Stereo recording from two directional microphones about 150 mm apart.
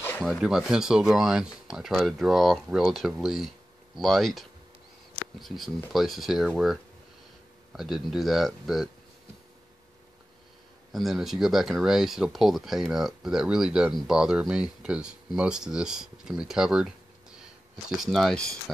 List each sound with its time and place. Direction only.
0.2 s speech: centre (ahead or behind)
10.9 s speech: centre (ahead or behind)